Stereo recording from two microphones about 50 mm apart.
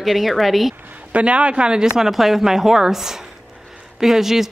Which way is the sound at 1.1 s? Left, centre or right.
Right.